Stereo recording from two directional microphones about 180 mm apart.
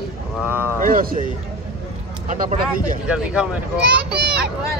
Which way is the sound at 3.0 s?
5° right (ahead or behind).